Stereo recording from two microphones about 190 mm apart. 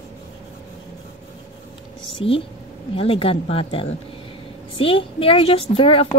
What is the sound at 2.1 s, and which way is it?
Speech, 30° left (ahead or behind).